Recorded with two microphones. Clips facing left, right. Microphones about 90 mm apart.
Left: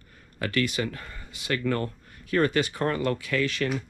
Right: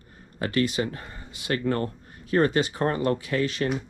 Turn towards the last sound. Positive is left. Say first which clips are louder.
# right 1 dB
turn(degrees=-25)  # may be behind; listen again after turning